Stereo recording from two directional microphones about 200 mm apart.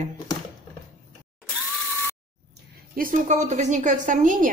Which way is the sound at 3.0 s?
40° right (ahead or behind).